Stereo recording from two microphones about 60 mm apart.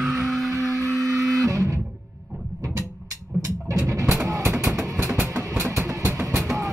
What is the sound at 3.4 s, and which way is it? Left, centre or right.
Music, right.